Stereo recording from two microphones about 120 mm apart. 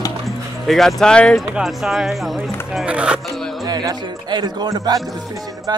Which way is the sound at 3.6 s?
35° right (ahead or behind).